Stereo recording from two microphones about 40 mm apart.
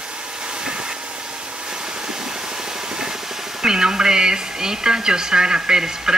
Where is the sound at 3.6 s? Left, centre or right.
Centre.